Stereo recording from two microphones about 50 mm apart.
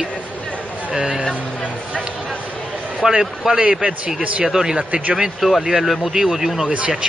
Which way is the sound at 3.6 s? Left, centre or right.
Right.